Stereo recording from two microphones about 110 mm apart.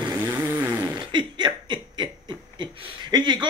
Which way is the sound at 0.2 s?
15° right (ahead or behind).